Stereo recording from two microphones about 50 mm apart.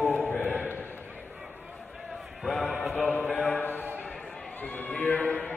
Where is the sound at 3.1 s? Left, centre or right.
Left.